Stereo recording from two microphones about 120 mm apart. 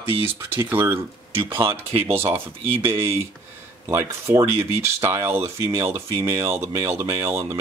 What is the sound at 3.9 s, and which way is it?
Speech, 25° right (ahead or behind).